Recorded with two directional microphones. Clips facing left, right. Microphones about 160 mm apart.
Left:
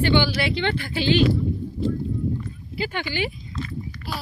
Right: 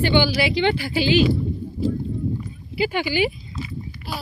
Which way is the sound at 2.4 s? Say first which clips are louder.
Right 5 dB; 10° right (ahead or behind).